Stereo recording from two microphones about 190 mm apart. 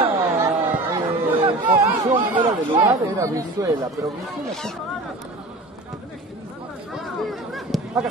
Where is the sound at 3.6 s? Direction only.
15° right (ahead or behind).